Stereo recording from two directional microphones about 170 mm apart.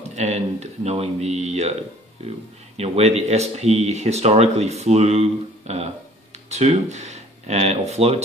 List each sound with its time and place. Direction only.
0.1 s speech: 40° right (ahead or behind)
2.8 s speech: 40° right (ahead or behind)